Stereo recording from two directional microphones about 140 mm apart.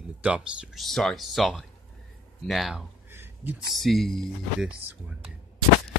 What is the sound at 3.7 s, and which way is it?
Speech, centre (ahead or behind).